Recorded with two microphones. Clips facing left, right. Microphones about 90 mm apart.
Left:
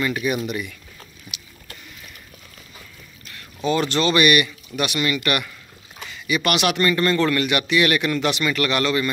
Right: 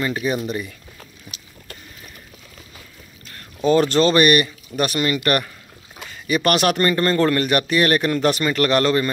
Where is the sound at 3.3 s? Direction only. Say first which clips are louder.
Right 5 dB; 40° right (ahead or behind).